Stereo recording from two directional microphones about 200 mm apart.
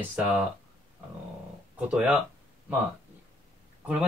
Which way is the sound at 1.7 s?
5° right (ahead or behind).